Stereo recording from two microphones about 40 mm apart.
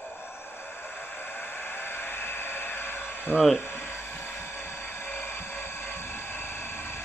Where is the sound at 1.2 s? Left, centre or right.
Left.